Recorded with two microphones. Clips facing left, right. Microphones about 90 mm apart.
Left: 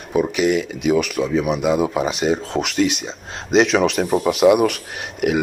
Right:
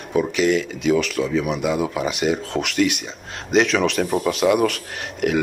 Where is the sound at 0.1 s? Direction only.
20° left (ahead or behind).